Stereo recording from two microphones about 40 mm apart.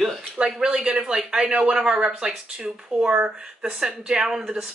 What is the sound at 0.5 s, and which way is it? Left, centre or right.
Speech, centre.